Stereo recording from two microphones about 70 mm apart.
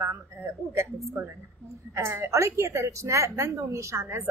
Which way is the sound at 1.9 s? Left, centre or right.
Right.